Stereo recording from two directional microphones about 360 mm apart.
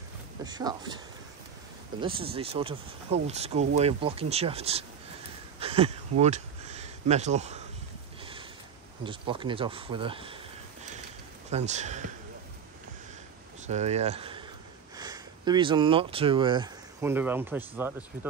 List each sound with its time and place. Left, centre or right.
0.4 s speech: centre
5.6 s a sound: centre
9.0 s speech: centre
11.5 s speech: centre
13.7 s speech: centre